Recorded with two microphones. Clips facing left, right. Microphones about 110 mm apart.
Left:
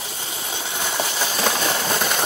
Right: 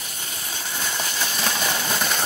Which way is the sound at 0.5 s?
25° left (ahead or behind).